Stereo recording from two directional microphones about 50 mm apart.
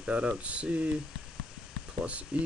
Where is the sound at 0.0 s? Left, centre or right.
Right.